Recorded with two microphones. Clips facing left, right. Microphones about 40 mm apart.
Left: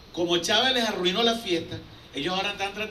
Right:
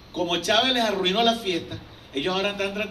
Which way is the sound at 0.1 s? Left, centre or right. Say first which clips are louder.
Right 1 dB; right.